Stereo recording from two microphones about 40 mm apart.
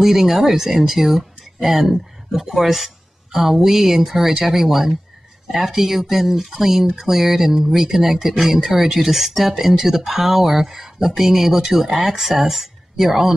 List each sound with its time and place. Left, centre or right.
0.0 s speech: centre